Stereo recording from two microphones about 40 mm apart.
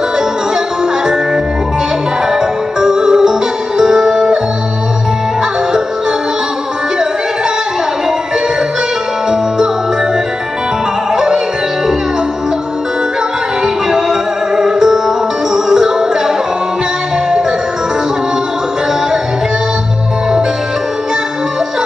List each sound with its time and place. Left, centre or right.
2.8 s music: centre
11.1 s music: centre
13.8 s music: centre